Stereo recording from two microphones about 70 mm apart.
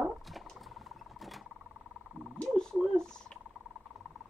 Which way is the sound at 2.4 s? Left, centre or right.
Centre.